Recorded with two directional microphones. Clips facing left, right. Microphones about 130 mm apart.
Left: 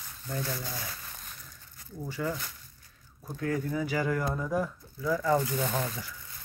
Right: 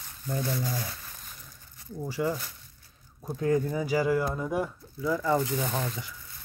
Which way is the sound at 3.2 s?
25° right (ahead or behind).